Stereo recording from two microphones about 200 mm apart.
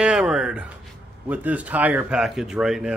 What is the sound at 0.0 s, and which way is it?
Speech, 5° right (ahead or behind).